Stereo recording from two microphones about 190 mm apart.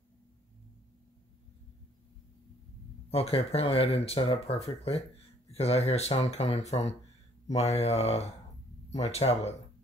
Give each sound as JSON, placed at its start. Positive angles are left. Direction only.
{"t": 3.1, "sound": "speech", "side_deg": 30}